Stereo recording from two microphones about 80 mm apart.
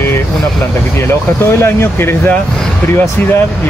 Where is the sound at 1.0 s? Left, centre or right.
Left.